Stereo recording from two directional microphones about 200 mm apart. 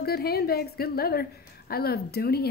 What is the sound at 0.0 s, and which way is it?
A woman's voice, 50° left (ahead or behind).